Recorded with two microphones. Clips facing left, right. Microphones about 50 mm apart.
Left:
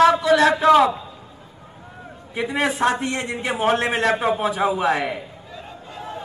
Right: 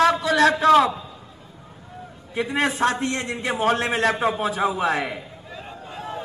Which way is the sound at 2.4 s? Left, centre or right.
Centre.